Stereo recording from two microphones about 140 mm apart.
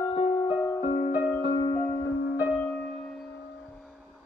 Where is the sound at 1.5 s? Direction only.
25° left (ahead or behind).